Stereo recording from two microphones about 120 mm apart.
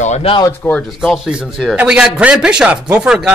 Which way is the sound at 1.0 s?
Centre (ahead or behind).